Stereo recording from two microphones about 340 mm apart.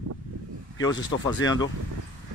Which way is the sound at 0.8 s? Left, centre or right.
Centre.